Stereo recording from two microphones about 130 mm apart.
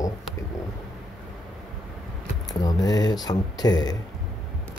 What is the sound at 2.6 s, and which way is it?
Speech, 30° left (ahead or behind).